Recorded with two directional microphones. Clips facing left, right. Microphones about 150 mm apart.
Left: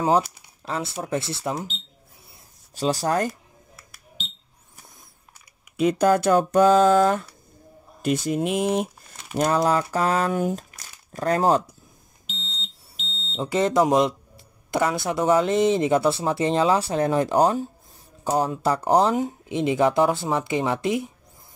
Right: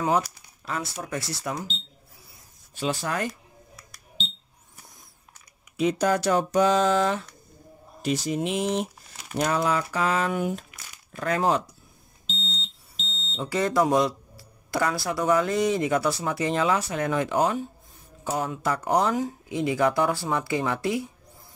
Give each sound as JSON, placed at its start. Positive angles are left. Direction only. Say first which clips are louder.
{"t": 0.7, "sound": "speech", "louder": "left 4 dB", "side_deg": 25}
{"t": 2.7, "sound": "speech", "louder": "left 5 dB", "side_deg": 40}
{"t": 3.3, "sound": "a sound", "louder": "left 3 dB", "side_deg": 5}
{"t": 5.8, "sound": "speech", "louder": "left 4 dB", "side_deg": 50}
{"t": 9.4, "sound": "speech", "louder": "left 4 dB", "side_deg": 40}
{"t": 13.0, "sound": "smoke detector", "louder": "even", "side_deg": 0}
{"t": 13.4, "sound": "speech", "louder": "left 3 dB", "side_deg": 25}